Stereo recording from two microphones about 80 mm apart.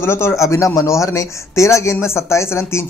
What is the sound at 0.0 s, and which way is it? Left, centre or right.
Speech, left.